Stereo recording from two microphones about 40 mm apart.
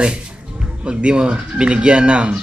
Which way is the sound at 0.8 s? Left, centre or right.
Right.